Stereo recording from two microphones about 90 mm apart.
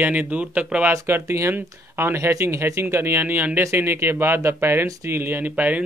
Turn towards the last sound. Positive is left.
turn(degrees=-15)  # may be behind; listen again after turning